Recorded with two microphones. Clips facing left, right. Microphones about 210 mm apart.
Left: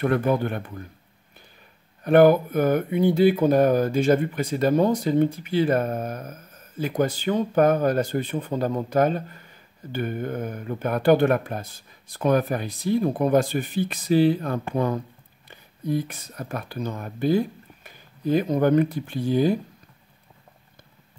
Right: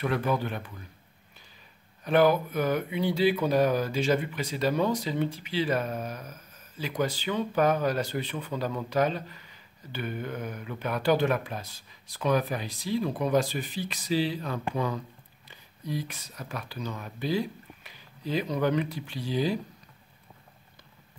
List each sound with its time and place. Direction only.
0.0 s speech: 50° left (ahead or behind)
2.0 s speech: 55° left (ahead or behind)